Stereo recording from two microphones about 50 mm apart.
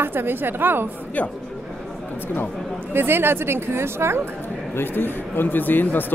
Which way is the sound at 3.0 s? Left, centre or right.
Right.